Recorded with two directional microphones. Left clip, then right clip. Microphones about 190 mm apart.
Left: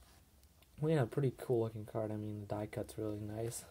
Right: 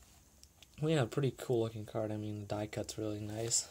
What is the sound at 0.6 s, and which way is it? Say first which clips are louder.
Speech: right 1 dB; 10° right (ahead or behind).